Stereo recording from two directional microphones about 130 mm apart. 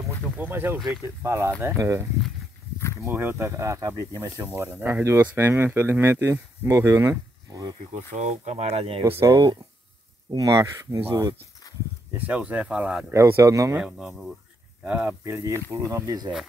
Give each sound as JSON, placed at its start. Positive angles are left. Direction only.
{"t": 0.4, "sound": "speech", "side_deg": -15}
{"t": 4.6, "sound": "speech", "side_deg": -15}
{"t": 7.9, "sound": "speech", "side_deg": -60}
{"t": 9.2, "sound": "speech", "side_deg": -35}
{"t": 12.1, "sound": "speech", "side_deg": -10}
{"t": 13.1, "sound": "speech", "side_deg": -20}
{"t": 13.7, "sound": "speech", "side_deg": -5}